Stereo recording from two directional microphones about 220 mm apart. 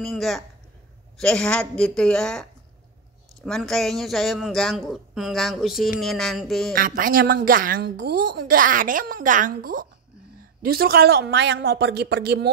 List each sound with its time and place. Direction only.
0.0 s a man's voice: centre (ahead or behind)
6.7 s a woman's voice: 40° right (ahead or behind)